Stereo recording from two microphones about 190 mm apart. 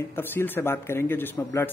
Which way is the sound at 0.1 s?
10° left (ahead or behind).